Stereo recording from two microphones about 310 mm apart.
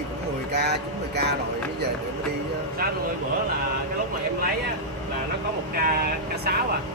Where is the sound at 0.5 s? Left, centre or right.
Right.